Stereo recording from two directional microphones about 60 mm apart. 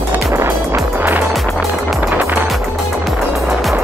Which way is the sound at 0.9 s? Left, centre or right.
Right.